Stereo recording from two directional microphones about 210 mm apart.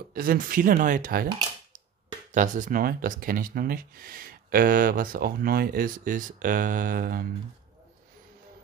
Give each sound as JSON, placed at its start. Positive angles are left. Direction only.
{"t": 0.1, "sound": "speech", "side_deg": -45}
{"t": 2.3, "sound": "speech", "side_deg": -35}